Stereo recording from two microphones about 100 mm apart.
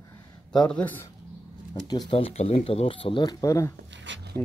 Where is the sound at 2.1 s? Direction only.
80° left.